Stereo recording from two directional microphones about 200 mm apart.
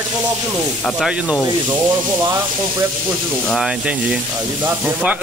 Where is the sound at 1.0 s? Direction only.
5° right (ahead or behind).